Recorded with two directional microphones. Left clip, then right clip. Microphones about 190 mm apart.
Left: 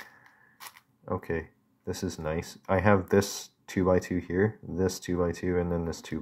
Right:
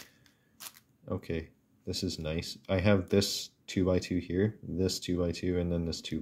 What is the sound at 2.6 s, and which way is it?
Speech, 20° right (ahead or behind).